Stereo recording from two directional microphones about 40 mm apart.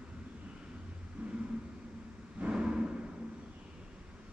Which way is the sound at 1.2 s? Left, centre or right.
Right.